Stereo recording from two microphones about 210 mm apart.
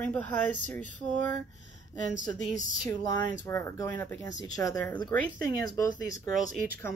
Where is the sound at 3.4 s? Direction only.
15° left (ahead or behind).